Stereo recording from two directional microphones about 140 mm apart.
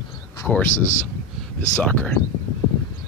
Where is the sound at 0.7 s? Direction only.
65° left (ahead or behind).